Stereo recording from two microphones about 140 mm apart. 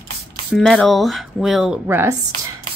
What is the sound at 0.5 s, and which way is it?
Speech, centre (ahead or behind).